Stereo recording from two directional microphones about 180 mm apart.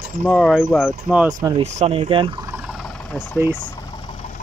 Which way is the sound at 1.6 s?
35° right (ahead or behind).